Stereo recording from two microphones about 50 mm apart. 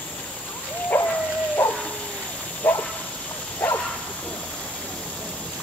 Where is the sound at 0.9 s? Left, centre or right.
Left.